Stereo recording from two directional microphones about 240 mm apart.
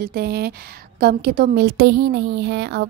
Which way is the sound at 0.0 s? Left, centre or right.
Right.